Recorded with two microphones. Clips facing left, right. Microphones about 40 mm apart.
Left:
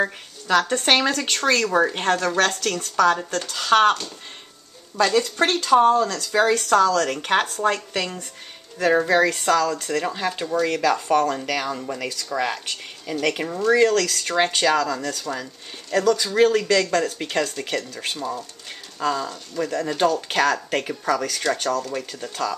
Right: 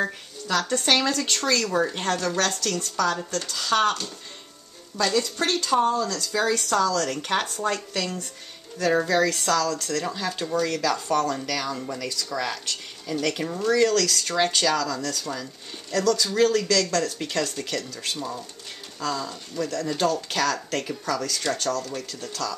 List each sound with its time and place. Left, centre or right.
0.0 s a sound: centre
0.8 s speech: left
3.3 s speech: centre
3.5 s speech: left
4.9 s speech: left
6.5 s speech: centre